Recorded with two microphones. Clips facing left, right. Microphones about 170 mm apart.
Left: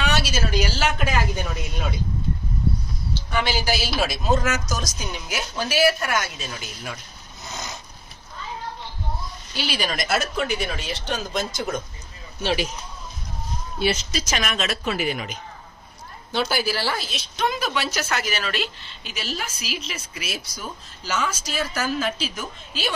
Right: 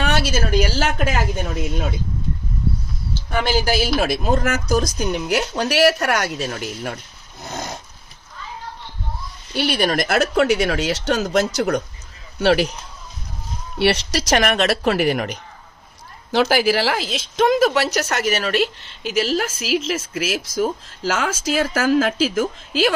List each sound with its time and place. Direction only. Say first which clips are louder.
0.0 s a woman's voice: right 4 dB; 50° right (ahead or behind)
3.3 s a woman's voice: right 4 dB; 50° right (ahead or behind)
7.4 s a sound: right 6 dB; 55° right (ahead or behind)
9.6 s speech: right 8 dB; 60° right (ahead or behind)
13.7 s speech: right 5 dB; 75° right (ahead or behind)
16.3 s a woman's voice: right 7 dB; 90° right
18.1 s a woman's voice: right 6 dB; 65° right (ahead or behind); by 22.9 s 90° right